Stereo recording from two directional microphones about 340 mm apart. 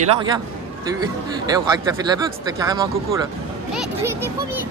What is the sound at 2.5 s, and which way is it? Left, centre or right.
Speech, centre.